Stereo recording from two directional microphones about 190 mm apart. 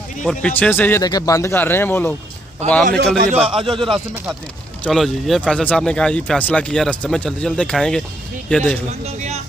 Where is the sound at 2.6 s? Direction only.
35° right (ahead or behind).